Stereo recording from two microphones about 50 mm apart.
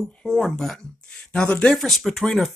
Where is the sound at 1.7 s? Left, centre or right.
Centre.